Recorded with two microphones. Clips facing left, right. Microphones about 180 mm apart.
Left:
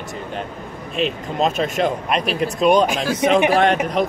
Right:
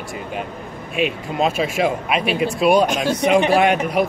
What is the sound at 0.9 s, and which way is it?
Speech, 10° right (ahead or behind).